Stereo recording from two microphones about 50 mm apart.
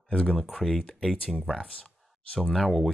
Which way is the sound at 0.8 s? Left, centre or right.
Centre.